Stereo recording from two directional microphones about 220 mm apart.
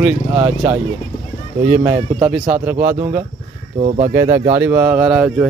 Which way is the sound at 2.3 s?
5° right (ahead or behind).